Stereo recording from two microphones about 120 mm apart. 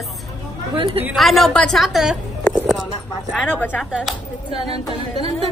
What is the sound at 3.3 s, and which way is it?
A man's voice, 5° right (ahead or behind).